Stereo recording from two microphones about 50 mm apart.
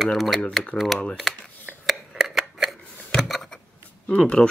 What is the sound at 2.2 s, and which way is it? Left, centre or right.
Scissors, centre.